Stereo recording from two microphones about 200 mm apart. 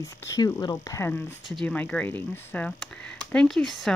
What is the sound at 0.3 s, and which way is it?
Speech, 20° left (ahead or behind).